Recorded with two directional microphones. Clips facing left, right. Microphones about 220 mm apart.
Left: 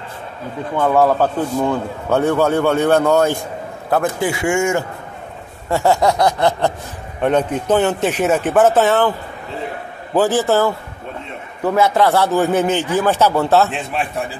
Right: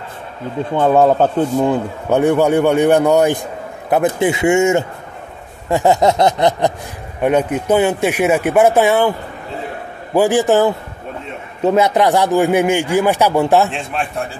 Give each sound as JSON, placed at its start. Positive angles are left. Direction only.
{"t": 0.7, "sound": "a man's voice", "side_deg": -25}
{"t": 3.9, "sound": "a sound", "side_deg": -20}
{"t": 7.2, "sound": "a man's voice", "side_deg": -10}
{"t": 10.1, "sound": "a man's voice", "side_deg": -15}
{"t": 13.7, "sound": "a man's voice", "side_deg": 0}